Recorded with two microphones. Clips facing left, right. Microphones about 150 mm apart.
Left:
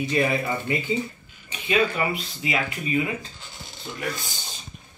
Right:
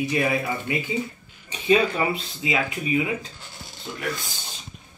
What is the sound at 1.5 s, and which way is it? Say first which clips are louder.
Speech: right 3 dB; 30° right (ahead or behind).